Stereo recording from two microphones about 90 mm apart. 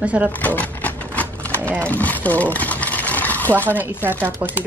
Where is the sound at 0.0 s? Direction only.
15° right (ahead or behind).